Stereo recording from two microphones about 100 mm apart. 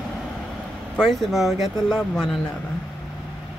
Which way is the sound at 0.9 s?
5° left (ahead or behind).